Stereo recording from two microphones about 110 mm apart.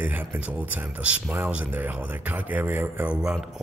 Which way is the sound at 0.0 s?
15° right (ahead or behind).